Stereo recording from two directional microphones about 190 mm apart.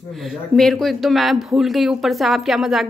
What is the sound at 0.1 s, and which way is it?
Speech, centre (ahead or behind).